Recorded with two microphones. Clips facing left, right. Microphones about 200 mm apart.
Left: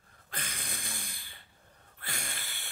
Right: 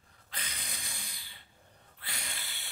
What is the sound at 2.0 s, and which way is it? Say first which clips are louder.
Snort: left 3 dB; 50° left (ahead or behind).